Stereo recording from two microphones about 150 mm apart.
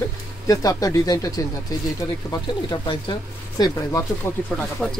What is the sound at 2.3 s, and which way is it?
Speech, 30° left (ahead or behind).